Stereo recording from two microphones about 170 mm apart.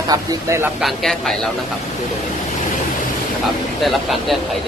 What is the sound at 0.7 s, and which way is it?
Speech, centre (ahead or behind).